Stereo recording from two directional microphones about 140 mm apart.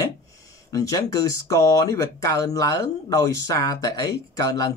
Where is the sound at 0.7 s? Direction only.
25° left (ahead or behind).